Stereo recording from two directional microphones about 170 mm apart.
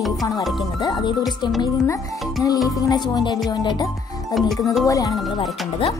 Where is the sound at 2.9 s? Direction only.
25° left (ahead or behind).